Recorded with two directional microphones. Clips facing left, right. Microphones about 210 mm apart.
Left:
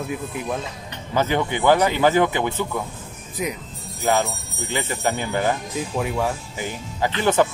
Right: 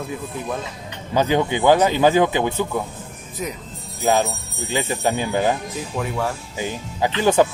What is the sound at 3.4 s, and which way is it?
Speech, 15° left (ahead or behind).